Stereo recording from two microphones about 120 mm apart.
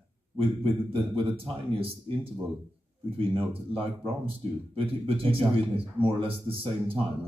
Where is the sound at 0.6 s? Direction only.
45° right (ahead or behind).